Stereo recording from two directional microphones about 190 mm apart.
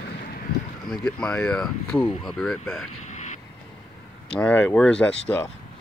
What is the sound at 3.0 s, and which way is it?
Vehicle, 40° left (ahead or behind).